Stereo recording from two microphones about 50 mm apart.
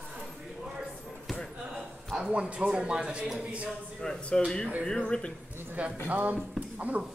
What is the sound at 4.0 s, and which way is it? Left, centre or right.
Speech, centre.